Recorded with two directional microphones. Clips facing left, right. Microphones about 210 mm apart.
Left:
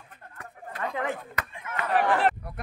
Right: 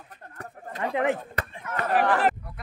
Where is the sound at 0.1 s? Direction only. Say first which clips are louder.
Right 4 dB; 40° right (ahead or behind).